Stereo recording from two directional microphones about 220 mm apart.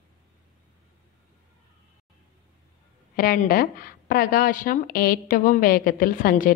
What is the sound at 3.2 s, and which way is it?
A woman's voice, 40° left (ahead or behind).